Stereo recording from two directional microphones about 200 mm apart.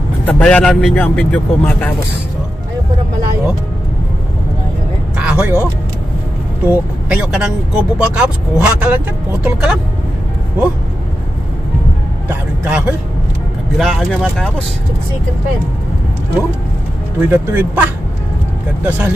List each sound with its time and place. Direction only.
0.2 s speech: 5° left (ahead or behind)
5.1 s a sound: 5° right (ahead or behind)
6.6 s speech: 5° right (ahead or behind)
12.3 s a man's voice: 5° right (ahead or behind)
17.3 s a man's voice: 5° right (ahead or behind)
18.9 s a man's voice: 5° right (ahead or behind)